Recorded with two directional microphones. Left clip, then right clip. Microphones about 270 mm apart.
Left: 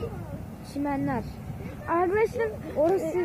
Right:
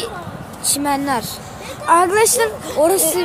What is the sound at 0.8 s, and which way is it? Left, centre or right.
Speech, centre.